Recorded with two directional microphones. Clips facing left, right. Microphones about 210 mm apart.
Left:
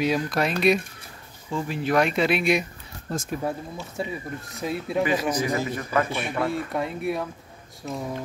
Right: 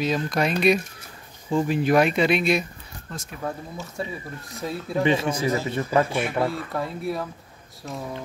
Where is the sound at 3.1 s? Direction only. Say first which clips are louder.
Left 8 dB; 40° left (ahead or behind).